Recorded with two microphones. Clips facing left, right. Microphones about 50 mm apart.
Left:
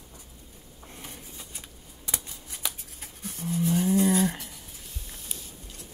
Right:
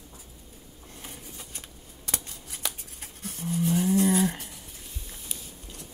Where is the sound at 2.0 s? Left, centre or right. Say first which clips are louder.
Right 1 dB; centre.